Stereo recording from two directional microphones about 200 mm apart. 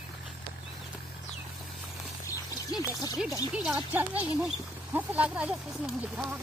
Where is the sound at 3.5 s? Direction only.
5° right (ahead or behind).